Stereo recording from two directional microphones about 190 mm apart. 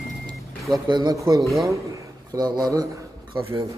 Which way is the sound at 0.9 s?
20° right (ahead or behind).